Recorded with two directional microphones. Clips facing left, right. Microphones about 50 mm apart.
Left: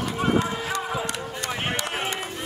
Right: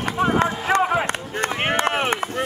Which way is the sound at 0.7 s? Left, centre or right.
Right.